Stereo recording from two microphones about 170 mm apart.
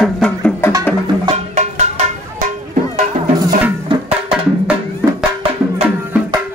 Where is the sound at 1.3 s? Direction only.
40° right (ahead or behind).